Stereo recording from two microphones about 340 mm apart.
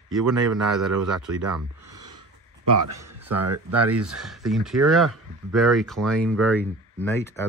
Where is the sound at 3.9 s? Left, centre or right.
Centre.